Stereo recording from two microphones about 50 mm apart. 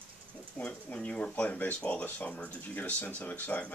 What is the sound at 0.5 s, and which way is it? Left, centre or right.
Speech, left.